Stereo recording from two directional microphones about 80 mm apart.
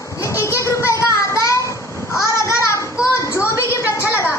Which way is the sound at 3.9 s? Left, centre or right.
Left.